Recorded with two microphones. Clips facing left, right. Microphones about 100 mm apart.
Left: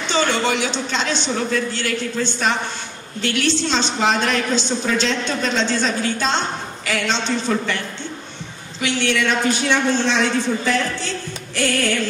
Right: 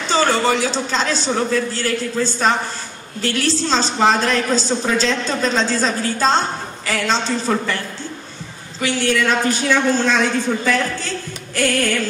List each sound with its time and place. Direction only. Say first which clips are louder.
0.1 s a woman's voice: right 3 dB; 35° right (ahead or behind)
8.8 s a woman's voice: right 2 dB; 40° right (ahead or behind)